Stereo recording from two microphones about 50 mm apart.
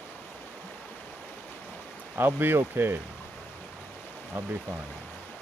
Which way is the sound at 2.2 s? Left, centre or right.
Right.